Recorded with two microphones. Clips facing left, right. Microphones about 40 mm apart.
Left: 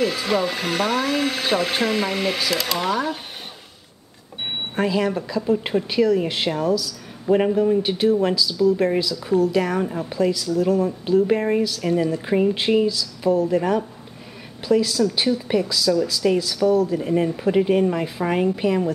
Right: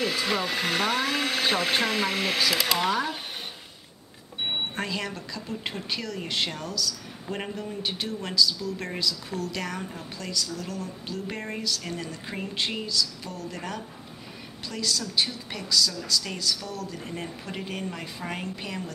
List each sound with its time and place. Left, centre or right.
0.0 s speech: centre
4.5 s a woman's voice: centre
7.9 s a woman's voice: centre
9.8 s a woman's voice: left